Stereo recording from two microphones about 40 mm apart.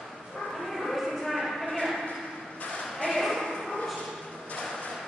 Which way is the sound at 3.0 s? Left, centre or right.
Centre.